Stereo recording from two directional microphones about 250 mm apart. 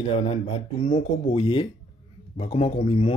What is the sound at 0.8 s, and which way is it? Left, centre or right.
Speech, left.